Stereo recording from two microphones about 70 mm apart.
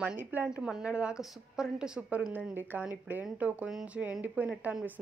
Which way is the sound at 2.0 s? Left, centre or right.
Right.